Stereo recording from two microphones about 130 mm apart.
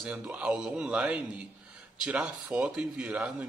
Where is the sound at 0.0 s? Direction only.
5° right (ahead or behind).